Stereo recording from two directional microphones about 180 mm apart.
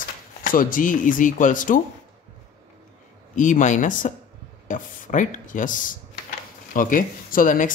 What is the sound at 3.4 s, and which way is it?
Speech, 45° left (ahead or behind).